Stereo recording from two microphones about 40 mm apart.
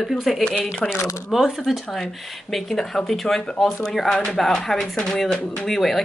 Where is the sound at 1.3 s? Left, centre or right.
Centre.